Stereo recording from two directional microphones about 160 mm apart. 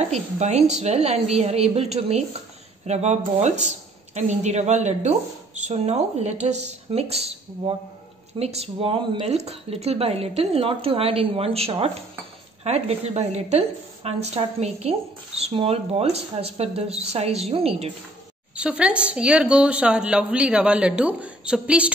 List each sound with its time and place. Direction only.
0.0 s speech: 45° right (ahead or behind)
18.6 s a woman's voice: 5° right (ahead or behind)